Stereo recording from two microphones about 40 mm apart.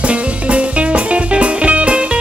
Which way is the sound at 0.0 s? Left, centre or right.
Right.